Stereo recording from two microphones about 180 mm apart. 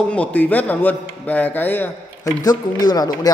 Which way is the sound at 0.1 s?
10° left (ahead or behind).